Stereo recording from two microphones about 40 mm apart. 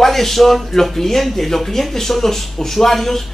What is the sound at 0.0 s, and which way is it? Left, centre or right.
Speech, centre.